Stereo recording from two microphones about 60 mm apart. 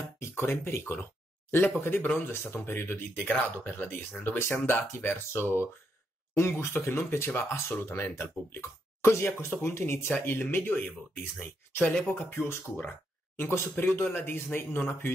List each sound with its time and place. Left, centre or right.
0.2 s speech: left
11.8 s speech: left
12.3 s speech: left